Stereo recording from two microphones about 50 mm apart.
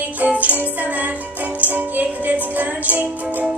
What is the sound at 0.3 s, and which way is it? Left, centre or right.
Music, right.